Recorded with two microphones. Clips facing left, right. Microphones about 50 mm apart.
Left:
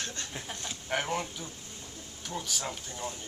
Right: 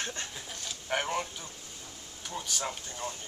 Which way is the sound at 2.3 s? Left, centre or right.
Centre.